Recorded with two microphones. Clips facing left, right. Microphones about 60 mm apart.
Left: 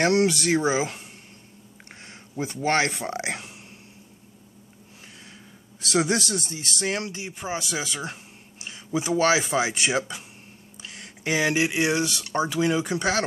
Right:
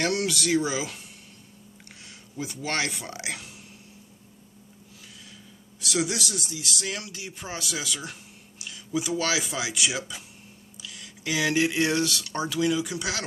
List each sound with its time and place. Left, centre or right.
0.0 s speech: left
2.3 s speech: left
5.8 s speech: left